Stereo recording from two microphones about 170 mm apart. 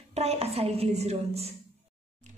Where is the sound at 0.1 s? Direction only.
40° right (ahead or behind).